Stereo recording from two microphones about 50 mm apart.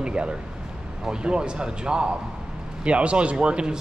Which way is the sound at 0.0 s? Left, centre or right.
Right.